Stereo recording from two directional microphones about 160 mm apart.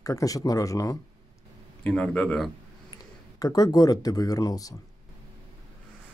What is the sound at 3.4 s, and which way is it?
Speech, 25° left (ahead or behind).